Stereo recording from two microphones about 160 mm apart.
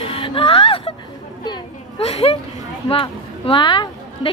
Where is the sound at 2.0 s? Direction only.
40° left (ahead or behind).